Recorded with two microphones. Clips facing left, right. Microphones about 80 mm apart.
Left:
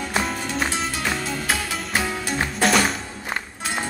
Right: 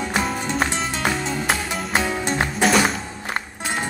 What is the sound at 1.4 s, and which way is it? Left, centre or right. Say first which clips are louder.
Music: right 2 dB; right.